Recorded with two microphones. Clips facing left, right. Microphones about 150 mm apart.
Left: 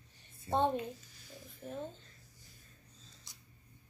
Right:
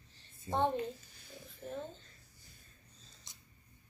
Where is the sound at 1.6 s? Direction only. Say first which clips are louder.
Right 1 dB; 5° right (ahead or behind).